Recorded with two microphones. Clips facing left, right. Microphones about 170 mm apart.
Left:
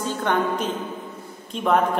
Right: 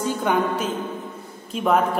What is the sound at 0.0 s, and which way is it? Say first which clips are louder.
A woman's voice: right 1 dB; 10° right (ahead or behind).